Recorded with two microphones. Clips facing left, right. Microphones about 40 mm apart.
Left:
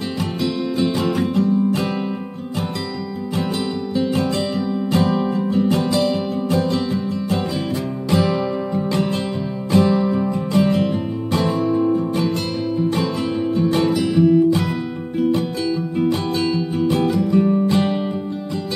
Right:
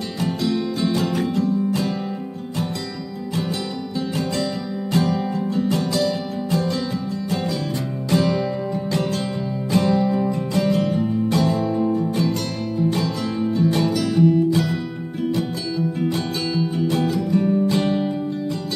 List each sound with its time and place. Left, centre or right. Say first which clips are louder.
0.5 s music: left 2 dB; centre
3.9 s music: left 5 dB; left
8.1 s music: left 1 dB; centre
9.7 s music: left 4 dB; left
9.9 s music: left 1 dB; centre
10.3 s music: left 3 dB; left
16.7 s music: left 5 dB; left